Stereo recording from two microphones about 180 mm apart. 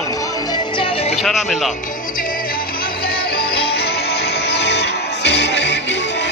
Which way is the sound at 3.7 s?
65° left (ahead or behind).